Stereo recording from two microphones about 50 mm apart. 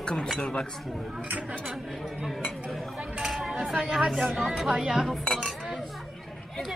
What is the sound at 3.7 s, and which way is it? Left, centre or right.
Speech, centre.